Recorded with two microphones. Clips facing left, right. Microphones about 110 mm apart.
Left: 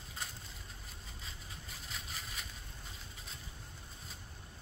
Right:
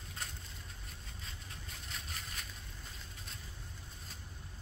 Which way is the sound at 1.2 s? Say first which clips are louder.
Even; centre (ahead or behind).